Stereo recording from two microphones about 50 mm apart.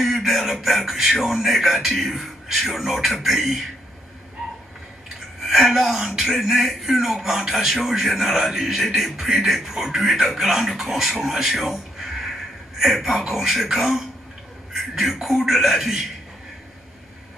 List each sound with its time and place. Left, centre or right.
0.0 s a sound: centre
0.8 s speech: centre
5.4 s speech: centre